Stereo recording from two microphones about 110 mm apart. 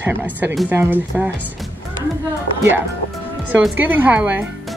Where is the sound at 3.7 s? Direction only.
15° right (ahead or behind).